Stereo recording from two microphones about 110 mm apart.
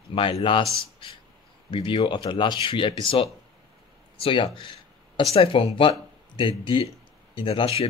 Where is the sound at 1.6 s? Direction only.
50° left (ahead or behind).